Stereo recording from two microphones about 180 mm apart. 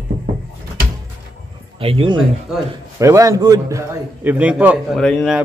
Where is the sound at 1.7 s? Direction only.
30° right (ahead or behind).